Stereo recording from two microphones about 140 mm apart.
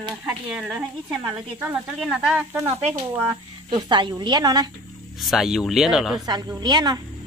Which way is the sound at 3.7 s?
30° right (ahead or behind).